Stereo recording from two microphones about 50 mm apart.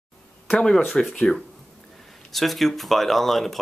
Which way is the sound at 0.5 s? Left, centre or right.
Centre.